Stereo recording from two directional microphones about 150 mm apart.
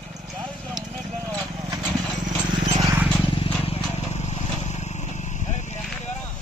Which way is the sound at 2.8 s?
15° right (ahead or behind).